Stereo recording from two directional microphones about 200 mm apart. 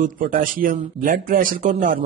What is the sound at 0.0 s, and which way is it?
Speech, 45° right (ahead or behind).